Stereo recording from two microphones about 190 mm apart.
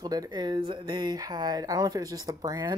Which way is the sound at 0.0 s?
20° right (ahead or behind).